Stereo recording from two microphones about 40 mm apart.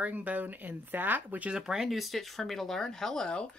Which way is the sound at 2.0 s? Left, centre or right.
Centre.